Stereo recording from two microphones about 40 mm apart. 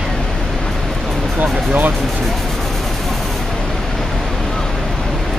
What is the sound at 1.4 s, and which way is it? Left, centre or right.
Music, right.